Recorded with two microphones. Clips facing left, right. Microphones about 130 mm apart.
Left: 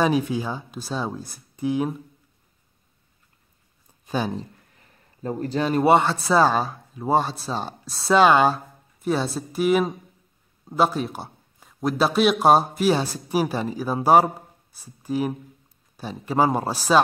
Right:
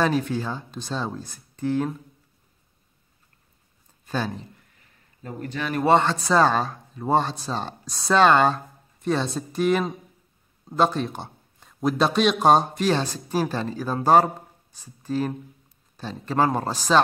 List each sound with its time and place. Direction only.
0.0 s a man's voice: 10° left (ahead or behind)
4.0 s a sound: 15° left (ahead or behind)
5.2 s a man's voice: 35° left (ahead or behind)
5.9 s a man's voice: 10° left (ahead or behind)